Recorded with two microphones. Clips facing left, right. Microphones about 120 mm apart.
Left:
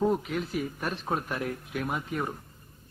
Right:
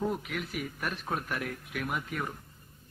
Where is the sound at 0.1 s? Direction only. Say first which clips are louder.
Left 6 dB; 30° left (ahead or behind).